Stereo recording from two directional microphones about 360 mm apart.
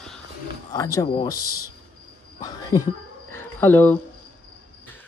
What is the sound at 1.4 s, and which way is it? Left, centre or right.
Speech, left.